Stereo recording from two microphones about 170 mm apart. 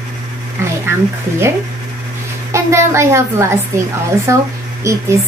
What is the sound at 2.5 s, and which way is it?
A woman's voice, 15° right (ahead or behind).